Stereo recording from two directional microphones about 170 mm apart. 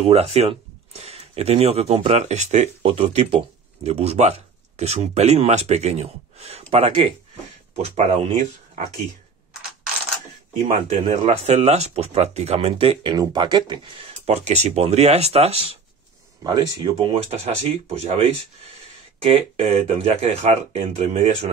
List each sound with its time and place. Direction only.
0.0 s speech: 35° right (ahead or behind)
10.7 s speech: 40° right (ahead or behind)
16.8 s speech: 30° right (ahead or behind)
19.2 s speech: 35° right (ahead or behind)